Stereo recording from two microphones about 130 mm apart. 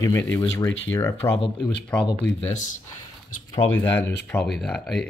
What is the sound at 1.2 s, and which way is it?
Speech, 45° left (ahead or behind).